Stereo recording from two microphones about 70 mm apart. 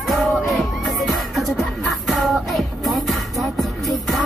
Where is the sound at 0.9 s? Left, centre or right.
Centre.